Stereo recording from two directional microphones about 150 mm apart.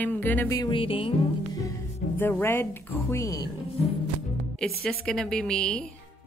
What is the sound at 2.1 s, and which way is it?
Speech, 15° left (ahead or behind).